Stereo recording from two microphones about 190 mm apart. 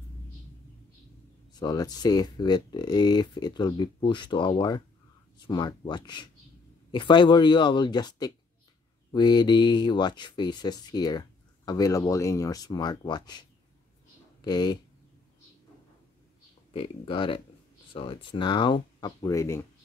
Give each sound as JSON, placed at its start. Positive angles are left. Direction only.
{"t": 1.5, "sound": "speech", "side_deg": 20}
{"t": 16.7, "sound": "speech", "side_deg": 30}